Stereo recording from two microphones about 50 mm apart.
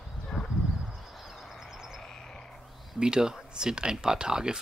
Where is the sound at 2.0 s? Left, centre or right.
Centre.